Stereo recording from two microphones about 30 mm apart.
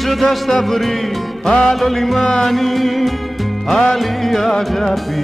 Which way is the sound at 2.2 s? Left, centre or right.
Left.